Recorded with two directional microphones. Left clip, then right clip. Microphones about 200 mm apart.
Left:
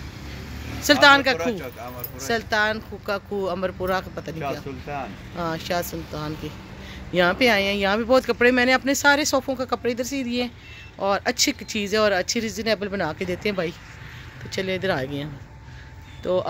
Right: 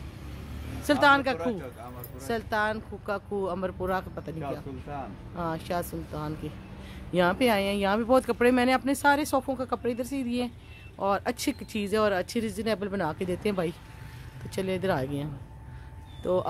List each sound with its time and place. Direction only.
0.8 s speech: centre (ahead or behind)
4.9 s speech: 30° left (ahead or behind)
5.3 s speech: centre (ahead or behind)
16.2 s speech: 5° right (ahead or behind)